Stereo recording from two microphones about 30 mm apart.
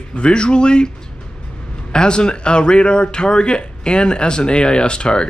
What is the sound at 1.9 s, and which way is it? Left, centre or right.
Speech, left.